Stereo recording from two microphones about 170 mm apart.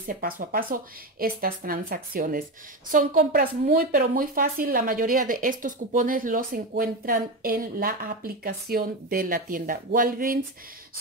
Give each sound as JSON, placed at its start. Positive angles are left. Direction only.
{"t": 0.0, "sound": "speech", "side_deg": -55}